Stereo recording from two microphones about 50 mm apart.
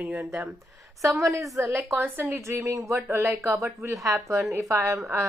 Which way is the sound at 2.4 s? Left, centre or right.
Right.